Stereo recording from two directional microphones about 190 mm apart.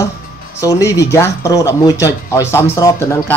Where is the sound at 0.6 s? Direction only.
15° left (ahead or behind).